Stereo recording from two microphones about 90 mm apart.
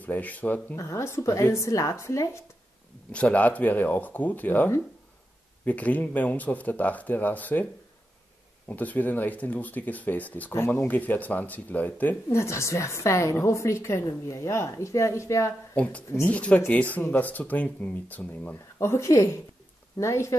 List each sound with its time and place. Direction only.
0.0 s speech: 15° left (ahead or behind)
0.7 s a woman's voice: 30° left (ahead or behind)
3.1 s speech: 15° left (ahead or behind)
8.6 s speech: 20° left (ahead or behind)
10.5 s speech: 30° left (ahead or behind)
12.3 s a woman's voice: 30° left (ahead or behind)
15.7 s speech: 15° left (ahead or behind)
18.8 s a woman's voice: 30° left (ahead or behind)